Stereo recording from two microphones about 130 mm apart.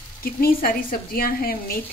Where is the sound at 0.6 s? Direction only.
90° left.